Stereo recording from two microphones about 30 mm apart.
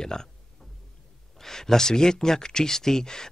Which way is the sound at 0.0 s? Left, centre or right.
Left.